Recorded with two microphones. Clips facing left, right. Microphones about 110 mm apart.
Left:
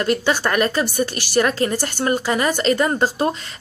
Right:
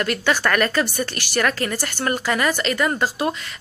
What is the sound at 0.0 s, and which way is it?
Speech, 20° left (ahead or behind).